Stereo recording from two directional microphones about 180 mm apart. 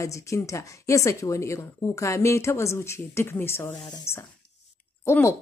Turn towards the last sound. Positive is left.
turn(degrees=15)  # may be behind; listen again after turning